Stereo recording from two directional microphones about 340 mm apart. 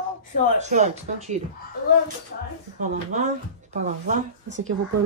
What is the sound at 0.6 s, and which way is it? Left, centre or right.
Speech, right.